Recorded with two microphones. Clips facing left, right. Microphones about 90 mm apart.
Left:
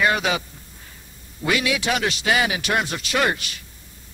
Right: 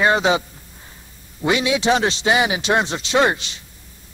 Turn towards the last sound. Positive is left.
turn(degrees=-25)  # may be behind; listen again after turning